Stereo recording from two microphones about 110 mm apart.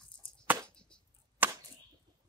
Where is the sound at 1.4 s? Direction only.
15° right (ahead or behind).